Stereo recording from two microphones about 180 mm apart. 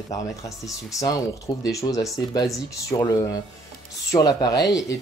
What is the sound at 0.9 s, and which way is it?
Speech, 20° left (ahead or behind).